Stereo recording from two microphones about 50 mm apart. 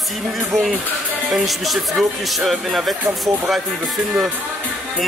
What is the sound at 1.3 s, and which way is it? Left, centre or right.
Speech, centre.